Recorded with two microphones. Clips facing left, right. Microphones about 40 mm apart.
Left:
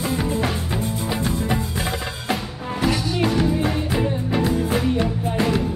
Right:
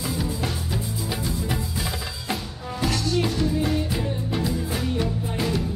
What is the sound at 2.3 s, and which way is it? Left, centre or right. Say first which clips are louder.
Music: left 5 dB; centre.